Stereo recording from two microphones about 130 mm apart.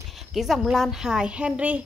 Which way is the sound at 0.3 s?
Centre (ahead or behind).